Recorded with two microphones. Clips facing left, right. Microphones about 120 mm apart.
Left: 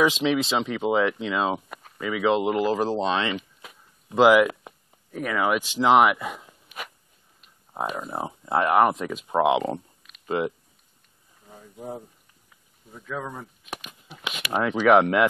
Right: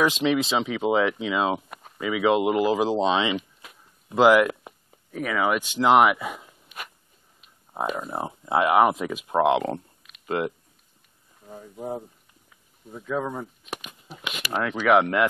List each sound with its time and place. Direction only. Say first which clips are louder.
0.0 s speech: even; centre (ahead or behind)
3.3 s a sound: right 3 dB; centre (ahead or behind)
7.4 s speech: right 1 dB; centre (ahead or behind)
11.4 s a sound: right 6 dB; 10° right (ahead or behind)
11.7 s speech: right 4 dB; 25° right (ahead or behind)
12.9 s speech: right 5 dB; 10° right (ahead or behind)